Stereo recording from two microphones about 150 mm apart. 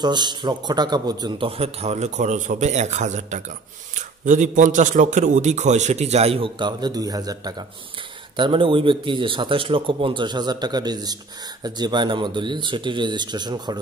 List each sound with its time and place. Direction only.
0.0 s a man's voice: 30° right (ahead or behind)